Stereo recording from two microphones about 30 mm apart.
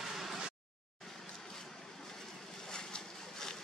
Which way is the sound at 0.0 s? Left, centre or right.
Centre.